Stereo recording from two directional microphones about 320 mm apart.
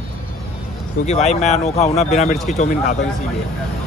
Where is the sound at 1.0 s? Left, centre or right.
Left.